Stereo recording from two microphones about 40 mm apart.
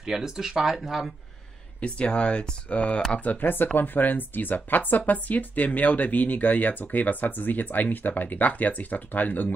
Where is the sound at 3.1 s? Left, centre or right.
Left.